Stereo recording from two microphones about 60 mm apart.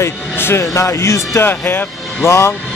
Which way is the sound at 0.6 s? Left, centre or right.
Left.